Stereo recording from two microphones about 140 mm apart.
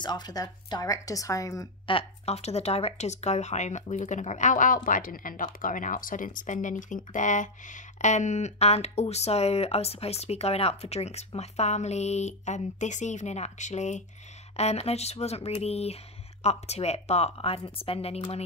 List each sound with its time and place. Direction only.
0.0 s a woman's voice: 30° left (ahead or behind)
1.9 s a woman's voice: 45° left (ahead or behind)